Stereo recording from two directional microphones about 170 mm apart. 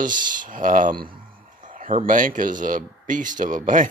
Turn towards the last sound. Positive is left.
turn(degrees=-50)  # may be behind; listen again after turning